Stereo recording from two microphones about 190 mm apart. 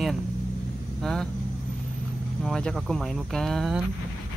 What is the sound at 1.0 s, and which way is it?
Speech, 5° left (ahead or behind).